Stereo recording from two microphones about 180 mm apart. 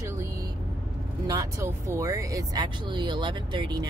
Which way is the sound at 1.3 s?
15° right (ahead or behind).